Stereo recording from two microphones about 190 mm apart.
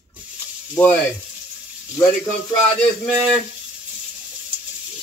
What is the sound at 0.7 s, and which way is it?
Speech, 10° left (ahead or behind).